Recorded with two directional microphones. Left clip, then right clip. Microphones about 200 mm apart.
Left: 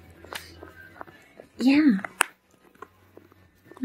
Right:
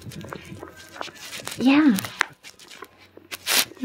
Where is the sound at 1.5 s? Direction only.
10° left (ahead or behind).